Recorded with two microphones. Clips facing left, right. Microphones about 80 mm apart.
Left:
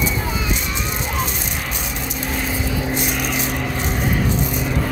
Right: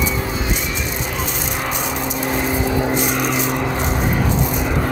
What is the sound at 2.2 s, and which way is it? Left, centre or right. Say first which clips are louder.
Vehicle: right 4 dB; right.